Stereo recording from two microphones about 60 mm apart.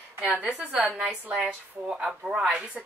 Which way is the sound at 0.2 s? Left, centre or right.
Right.